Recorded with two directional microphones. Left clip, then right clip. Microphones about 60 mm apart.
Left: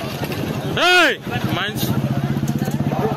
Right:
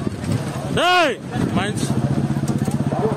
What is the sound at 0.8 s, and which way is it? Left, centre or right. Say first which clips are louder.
Speech: left 2 dB; right.